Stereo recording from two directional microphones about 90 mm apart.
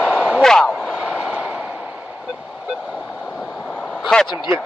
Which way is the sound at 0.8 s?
15° right (ahead or behind).